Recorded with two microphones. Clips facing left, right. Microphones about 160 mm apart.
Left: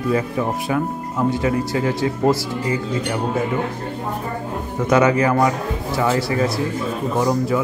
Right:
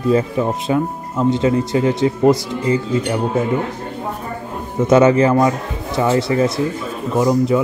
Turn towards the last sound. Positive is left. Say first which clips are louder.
# right 4 dB
turn(degrees=-20)  # may be behind; listen again after turning